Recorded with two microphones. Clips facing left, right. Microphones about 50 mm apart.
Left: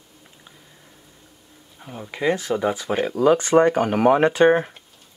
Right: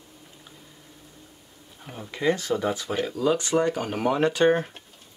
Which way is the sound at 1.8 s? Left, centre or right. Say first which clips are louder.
Left 2 dB; centre.